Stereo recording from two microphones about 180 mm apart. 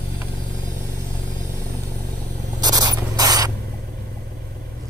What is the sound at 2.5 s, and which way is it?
Writing, 20° right (ahead or behind).